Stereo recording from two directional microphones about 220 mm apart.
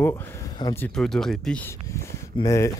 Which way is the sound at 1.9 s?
15° left (ahead or behind).